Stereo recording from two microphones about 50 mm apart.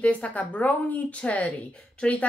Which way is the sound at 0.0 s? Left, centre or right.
Left.